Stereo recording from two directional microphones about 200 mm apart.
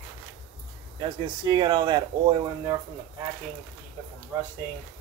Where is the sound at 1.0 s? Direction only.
25° right (ahead or behind).